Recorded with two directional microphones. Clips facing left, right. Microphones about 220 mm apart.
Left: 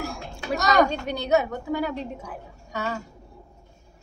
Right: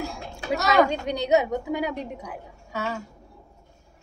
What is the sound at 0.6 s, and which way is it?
Speech, 5° right (ahead or behind).